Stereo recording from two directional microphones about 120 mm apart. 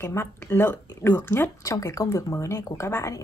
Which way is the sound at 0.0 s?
20° left (ahead or behind).